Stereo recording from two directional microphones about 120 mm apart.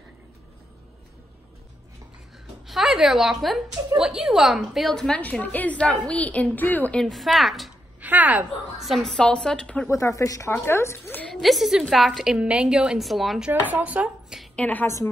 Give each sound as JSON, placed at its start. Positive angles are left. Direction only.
{"t": 2.6, "sound": "a woman's voice", "side_deg": 0}
{"t": 8.0, "sound": "a woman's voice", "side_deg": -15}
{"t": 8.7, "sound": "a woman's voice", "side_deg": 0}
{"t": 9.8, "sound": "a woman's voice", "side_deg": 25}
{"t": 11.4, "sound": "a woman's voice", "side_deg": 0}
{"t": 13.5, "sound": "speech", "side_deg": -15}
{"t": 14.4, "sound": "a woman's voice", "side_deg": 10}